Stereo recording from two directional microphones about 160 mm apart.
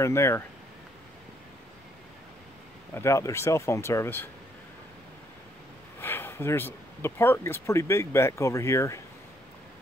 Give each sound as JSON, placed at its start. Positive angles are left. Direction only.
{"t": 0.0, "sound": "speech", "side_deg": 15}
{"t": 2.9, "sound": "speech", "side_deg": 15}
{"t": 5.9, "sound": "speech", "side_deg": 15}